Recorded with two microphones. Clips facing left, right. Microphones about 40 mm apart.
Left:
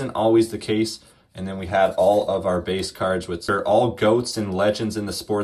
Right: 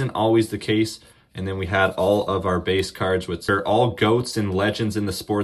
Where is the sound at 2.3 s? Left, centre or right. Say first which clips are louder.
Right 1 dB; right.